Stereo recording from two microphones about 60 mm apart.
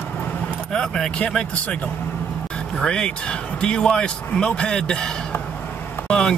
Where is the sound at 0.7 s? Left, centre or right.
Centre.